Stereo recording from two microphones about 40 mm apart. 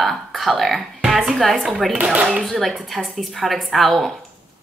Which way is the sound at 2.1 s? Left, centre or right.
Right.